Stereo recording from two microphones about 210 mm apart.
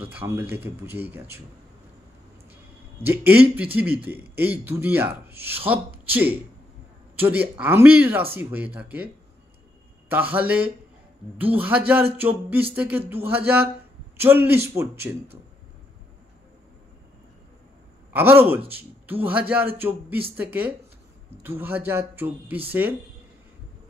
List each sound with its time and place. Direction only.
0.0 s speech: 10° right (ahead or behind)
3.0 s speech: 10° right (ahead or behind)
18.1 s speech: 10° right (ahead or behind)